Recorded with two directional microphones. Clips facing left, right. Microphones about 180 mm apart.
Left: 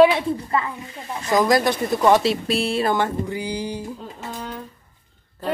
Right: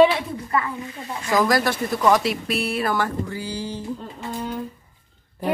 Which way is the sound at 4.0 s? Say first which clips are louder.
Right 2 dB; 5° right (ahead or behind).